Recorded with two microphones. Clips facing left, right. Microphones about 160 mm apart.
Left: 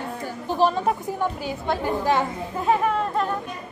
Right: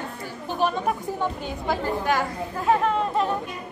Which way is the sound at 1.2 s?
5° left (ahead or behind).